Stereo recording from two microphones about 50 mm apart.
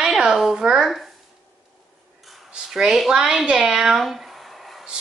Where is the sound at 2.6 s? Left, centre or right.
Centre.